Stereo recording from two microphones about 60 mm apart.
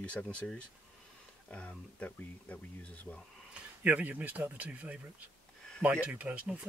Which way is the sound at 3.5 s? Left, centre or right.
Right.